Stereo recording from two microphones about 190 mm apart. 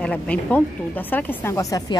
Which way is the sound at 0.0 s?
5° left (ahead or behind).